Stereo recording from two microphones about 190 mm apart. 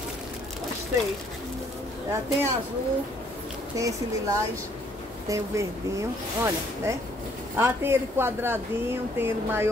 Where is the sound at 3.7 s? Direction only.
15° right (ahead or behind).